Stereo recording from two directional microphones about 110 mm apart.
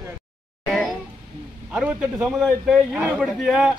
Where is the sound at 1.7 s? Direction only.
10° right (ahead or behind).